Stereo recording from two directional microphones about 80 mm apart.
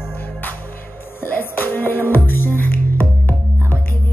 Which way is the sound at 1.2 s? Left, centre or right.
Left.